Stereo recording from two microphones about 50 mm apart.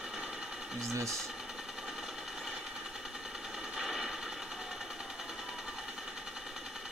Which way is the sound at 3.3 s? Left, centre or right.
Centre.